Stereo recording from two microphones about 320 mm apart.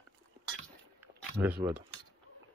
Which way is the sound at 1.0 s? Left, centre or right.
Centre.